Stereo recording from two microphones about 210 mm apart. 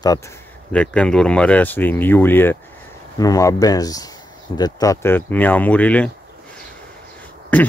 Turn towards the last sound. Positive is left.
turn(degrees=5)  # may be behind; listen again after turning